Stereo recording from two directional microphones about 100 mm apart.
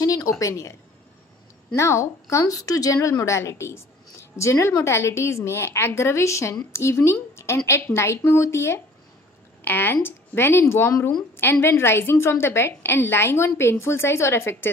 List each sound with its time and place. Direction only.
0.0 s a woman's voice: 35° left (ahead or behind)
1.8 s a woman's voice: 30° left (ahead or behind)